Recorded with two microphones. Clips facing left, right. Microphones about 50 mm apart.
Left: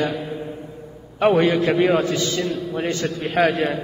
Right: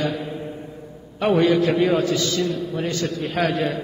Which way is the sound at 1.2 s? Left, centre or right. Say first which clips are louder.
Left 1 dB; left.